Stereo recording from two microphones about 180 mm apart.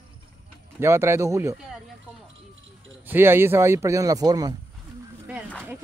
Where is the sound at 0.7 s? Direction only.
15° right (ahead or behind).